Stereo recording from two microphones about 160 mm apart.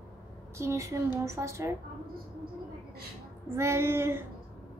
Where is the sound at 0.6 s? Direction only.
20° right (ahead or behind).